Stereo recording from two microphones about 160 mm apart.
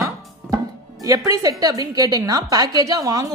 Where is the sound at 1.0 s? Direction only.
20° right (ahead or behind).